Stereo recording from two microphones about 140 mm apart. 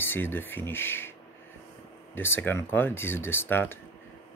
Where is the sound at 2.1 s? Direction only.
15° left (ahead or behind).